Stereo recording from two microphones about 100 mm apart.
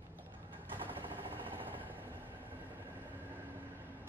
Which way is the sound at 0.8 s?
20° right (ahead or behind).